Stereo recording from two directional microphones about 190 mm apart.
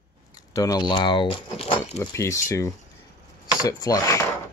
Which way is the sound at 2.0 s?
15° left (ahead or behind).